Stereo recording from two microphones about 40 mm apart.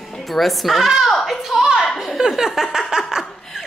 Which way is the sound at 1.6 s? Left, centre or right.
Centre.